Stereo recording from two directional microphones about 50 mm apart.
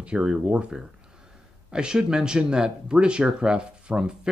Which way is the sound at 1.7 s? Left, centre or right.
Centre.